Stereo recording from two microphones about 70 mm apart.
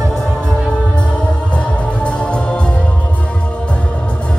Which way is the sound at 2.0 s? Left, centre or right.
Centre.